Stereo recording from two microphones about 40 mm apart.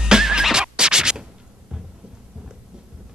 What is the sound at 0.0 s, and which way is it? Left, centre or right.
Scratch, centre.